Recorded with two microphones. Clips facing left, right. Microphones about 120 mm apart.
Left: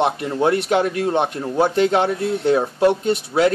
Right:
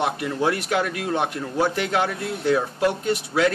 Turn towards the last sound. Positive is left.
turn(degrees=25)  # may be behind; listen again after turning